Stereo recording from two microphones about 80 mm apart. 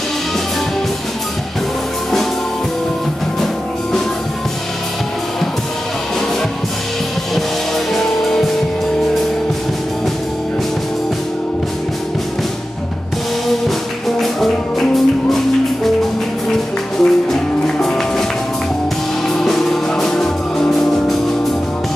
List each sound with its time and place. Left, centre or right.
7.9 s music: centre
13.5 s music: centre
17.0 s music: centre
19.2 s music: centre